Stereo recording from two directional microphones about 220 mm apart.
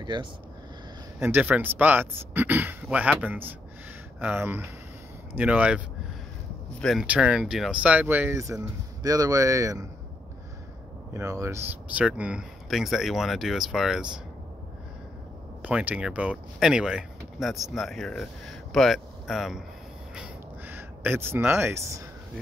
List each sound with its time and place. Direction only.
0.0 s speech: 20° right (ahead or behind)
1.2 s speech: 10° right (ahead or behind)
6.8 s speech: centre (ahead or behind)
11.1 s speech: 15° right (ahead or behind)
15.6 s speech: 5° right (ahead or behind)
20.2 s a sound: 10° right (ahead or behind)